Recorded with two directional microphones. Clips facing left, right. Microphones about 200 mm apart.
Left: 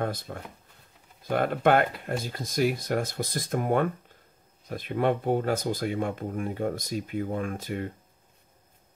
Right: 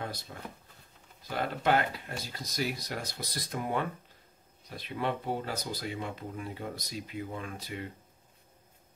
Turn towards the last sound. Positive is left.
turn(degrees=50)  # may be behind; listen again after turning